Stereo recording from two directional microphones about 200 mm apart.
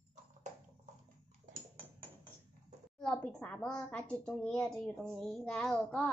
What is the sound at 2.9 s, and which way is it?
A woman's voice, 5° left (ahead or behind).